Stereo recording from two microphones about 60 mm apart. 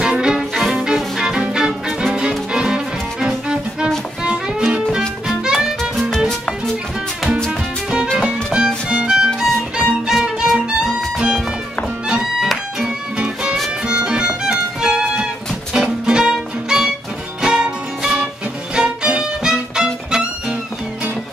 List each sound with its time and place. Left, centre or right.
0.0 s music: centre
5.8 s music: centre
8.2 s music: centre